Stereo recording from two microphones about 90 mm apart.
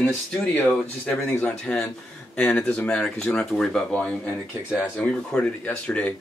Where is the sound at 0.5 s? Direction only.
15° left (ahead or behind).